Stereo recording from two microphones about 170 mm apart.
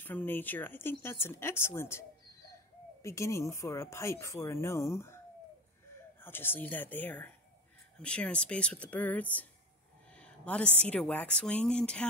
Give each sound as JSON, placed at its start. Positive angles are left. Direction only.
{"t": 0.0, "sound": "a woman's voice", "side_deg": 10}